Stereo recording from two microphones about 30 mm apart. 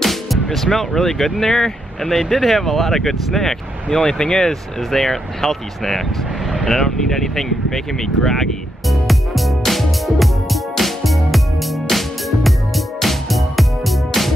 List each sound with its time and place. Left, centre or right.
0.0 s music: centre
0.7 s speech: centre
3.9 s speech: left
4.5 s speech: centre
8.8 s music: centre